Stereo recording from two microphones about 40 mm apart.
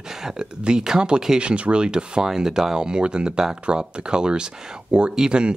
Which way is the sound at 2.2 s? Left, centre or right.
Centre.